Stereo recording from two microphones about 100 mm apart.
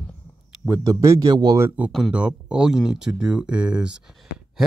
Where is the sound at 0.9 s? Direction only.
35° right (ahead or behind).